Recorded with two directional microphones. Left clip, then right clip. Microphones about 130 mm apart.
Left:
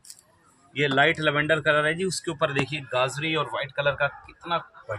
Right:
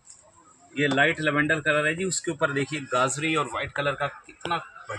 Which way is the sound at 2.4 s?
15° left (ahead or behind).